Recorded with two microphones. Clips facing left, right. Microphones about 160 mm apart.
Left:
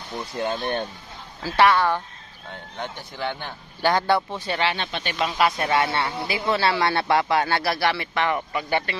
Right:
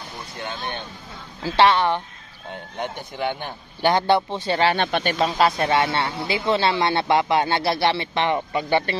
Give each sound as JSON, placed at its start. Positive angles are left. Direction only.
{"t": 0.4, "sound": "speech", "side_deg": 40}
{"t": 1.4, "sound": "speech", "side_deg": -25}
{"t": 4.7, "sound": "speech", "side_deg": -55}
{"t": 5.2, "sound": "speech", "side_deg": -30}